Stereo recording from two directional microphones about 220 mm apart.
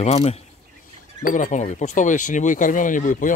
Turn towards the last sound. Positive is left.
turn(degrees=35)  # may be behind; listen again after turning